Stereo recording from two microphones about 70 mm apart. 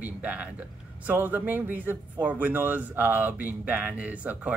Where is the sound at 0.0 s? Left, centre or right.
Right.